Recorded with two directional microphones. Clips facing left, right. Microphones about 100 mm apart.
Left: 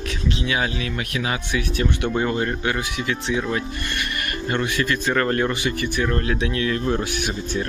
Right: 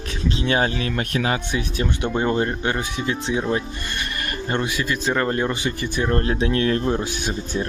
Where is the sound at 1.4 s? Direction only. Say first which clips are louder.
Left 1 dB; 25° right (ahead or behind).